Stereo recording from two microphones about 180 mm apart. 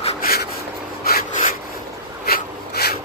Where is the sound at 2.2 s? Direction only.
55° left (ahead or behind).